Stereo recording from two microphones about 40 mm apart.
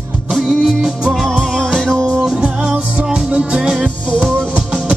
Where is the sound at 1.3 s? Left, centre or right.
Centre.